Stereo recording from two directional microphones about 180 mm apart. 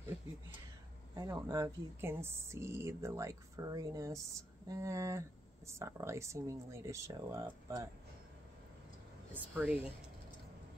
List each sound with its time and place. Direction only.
1.1 s speech: 20° right (ahead or behind)
9.3 s speech: 10° right (ahead or behind)